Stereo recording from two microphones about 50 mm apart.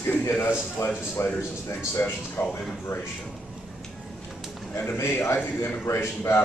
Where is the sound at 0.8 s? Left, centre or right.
Left.